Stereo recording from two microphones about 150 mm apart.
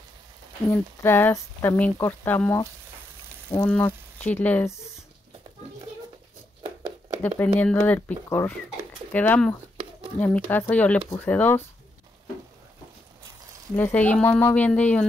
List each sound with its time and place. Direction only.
0.7 s speech: 15° left (ahead or behind)
7.2 s speech: 10° left (ahead or behind)
13.7 s speech: 10° left (ahead or behind)